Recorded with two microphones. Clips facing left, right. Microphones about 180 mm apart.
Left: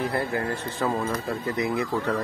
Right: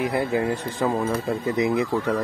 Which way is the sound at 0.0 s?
20° right (ahead or behind).